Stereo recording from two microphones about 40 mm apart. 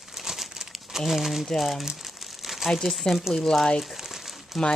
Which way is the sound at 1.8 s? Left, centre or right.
Centre.